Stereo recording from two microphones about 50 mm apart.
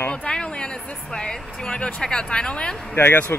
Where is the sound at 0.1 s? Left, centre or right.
Centre.